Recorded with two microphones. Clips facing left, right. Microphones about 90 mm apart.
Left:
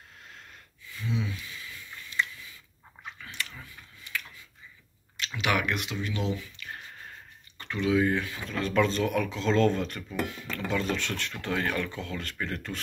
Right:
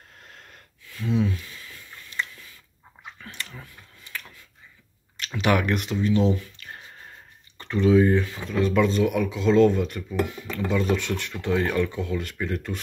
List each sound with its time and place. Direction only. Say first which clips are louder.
0.8 s a sound: right 8 dB; 60° right (ahead or behind)
3.3 s dog: right 1 dB; 40° right (ahead or behind)
5.1 s speech: right 6 dB; 35° right (ahead or behind)
7.5 s speech: right 7 dB; 30° right (ahead or behind)